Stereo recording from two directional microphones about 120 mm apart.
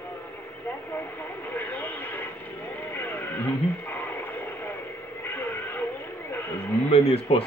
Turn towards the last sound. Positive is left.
turn(degrees=50)  # may be behind; listen again after turning